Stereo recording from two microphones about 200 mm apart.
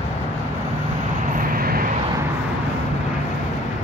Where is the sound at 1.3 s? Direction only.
45° right (ahead or behind).